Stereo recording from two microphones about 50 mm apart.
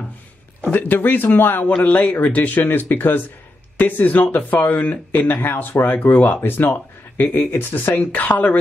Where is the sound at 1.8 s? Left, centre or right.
Left.